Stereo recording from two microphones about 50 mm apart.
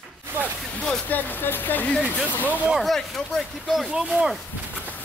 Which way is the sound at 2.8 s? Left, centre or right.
Centre.